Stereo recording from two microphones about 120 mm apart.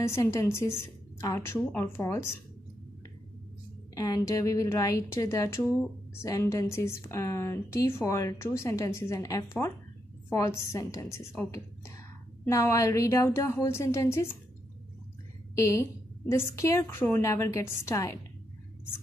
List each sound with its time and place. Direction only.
0.0 s a woman's voice: 20° left (ahead or behind)
3.9 s a woman's voice: 30° left (ahead or behind)
15.5 s a woman's voice: 25° left (ahead or behind)